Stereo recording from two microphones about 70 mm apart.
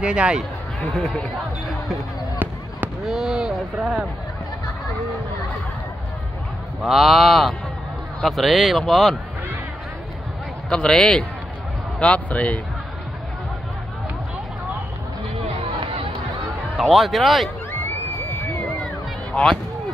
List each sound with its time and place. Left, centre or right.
0.0 s speech: centre
0.7 s speech: centre
3.0 s a sound: centre
6.8 s speech: centre
10.7 s speech: centre
16.8 s speech: centre